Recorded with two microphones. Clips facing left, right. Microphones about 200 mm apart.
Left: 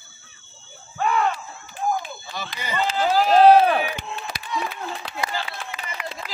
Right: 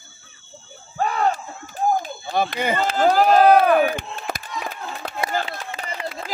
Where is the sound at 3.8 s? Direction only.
45° right (ahead or behind).